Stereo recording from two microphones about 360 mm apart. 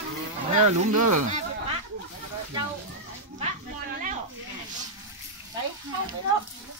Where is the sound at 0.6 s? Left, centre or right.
Right.